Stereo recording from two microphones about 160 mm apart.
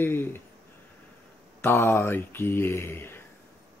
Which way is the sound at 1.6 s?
15° left (ahead or behind).